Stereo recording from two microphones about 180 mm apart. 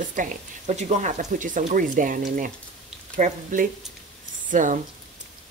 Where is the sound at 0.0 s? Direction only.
45° right (ahead or behind).